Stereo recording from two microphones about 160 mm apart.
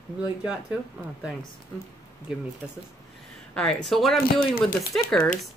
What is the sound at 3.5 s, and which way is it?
Speech, 5° left (ahead or behind).